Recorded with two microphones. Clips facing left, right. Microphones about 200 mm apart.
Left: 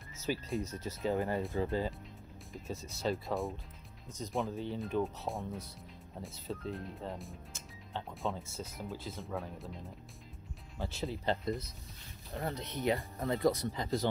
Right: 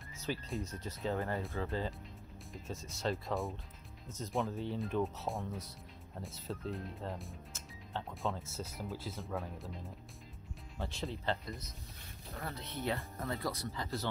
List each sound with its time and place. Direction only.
0.2 s speech: centre (ahead or behind)
1.1 s speech: 15° left (ahead or behind)
2.5 s speech: centre (ahead or behind)
12.5 s speech: 20° left (ahead or behind)